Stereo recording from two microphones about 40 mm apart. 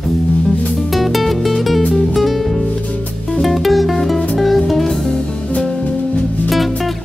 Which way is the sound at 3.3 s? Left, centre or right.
Centre.